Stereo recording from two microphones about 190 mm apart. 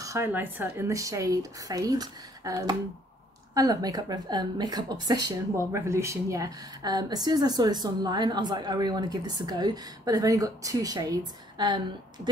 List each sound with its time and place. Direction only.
0.0 s speech: 15° right (ahead or behind)